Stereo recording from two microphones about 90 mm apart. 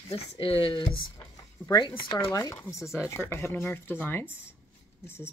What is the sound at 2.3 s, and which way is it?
Speech, 40° left (ahead or behind).